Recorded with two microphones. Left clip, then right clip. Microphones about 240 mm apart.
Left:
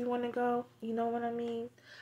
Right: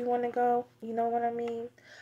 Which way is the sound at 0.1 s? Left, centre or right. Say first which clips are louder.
Right 6 dB; centre.